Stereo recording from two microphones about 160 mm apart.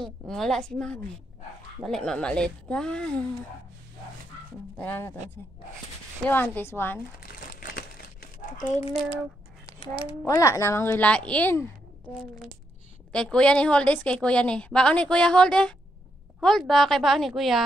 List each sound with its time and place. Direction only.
0.0 s a woman's voice: centre (ahead or behind)
4.7 s speech: 10° left (ahead or behind)
6.2 s speech: 10° left (ahead or behind)
7.3 s crumpling: 65° left (ahead or behind)
10.2 s speech: 20° left (ahead or behind)
13.1 s a woman's voice: 5° left (ahead or behind)